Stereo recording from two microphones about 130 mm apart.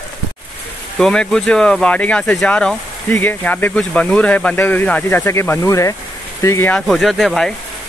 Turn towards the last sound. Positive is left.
turn(degrees=0)  # may be behind; listen again after turning